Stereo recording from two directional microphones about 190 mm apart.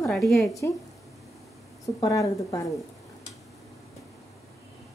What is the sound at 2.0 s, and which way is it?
Speech, 15° left (ahead or behind).